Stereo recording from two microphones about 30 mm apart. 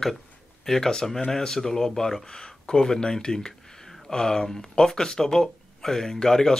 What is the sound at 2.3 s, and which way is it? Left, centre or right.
Speech, left.